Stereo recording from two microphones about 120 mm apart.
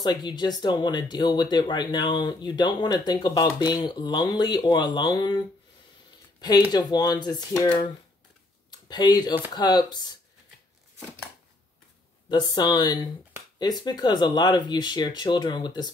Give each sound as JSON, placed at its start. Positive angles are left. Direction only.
{"t": 0.0, "sound": "speech", "side_deg": 35}
{"t": 6.7, "sound": "speech", "side_deg": 35}
{"t": 12.3, "sound": "speech", "side_deg": 35}